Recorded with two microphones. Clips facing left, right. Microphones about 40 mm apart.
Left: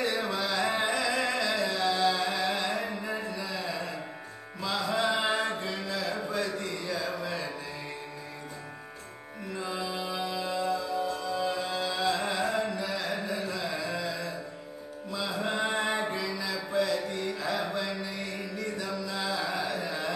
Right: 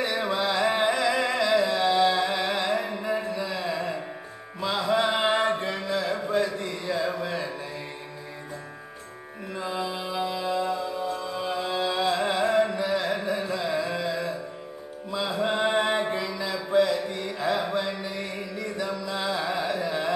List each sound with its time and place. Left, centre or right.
0.0 s music: right
3.3 s a sound: right
4.6 s music: right
9.5 s music: centre
15.0 s mantra: right
19.0 s carnatic music: right